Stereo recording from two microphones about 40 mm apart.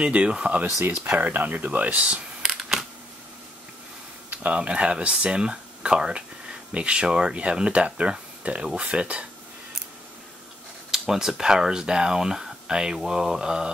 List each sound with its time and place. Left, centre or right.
0.0 s speech: right
1.1 s speech: right
2.0 s speech: right
2.4 s a sound: centre
4.3 s a sound: right
4.6 s speech: right
10.9 s speech: centre